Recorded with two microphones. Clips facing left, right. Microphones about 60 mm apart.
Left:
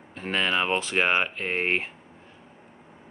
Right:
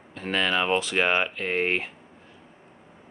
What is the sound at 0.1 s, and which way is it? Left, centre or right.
Speech, left.